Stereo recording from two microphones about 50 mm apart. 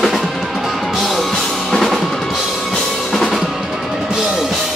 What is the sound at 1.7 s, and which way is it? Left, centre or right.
Music, centre.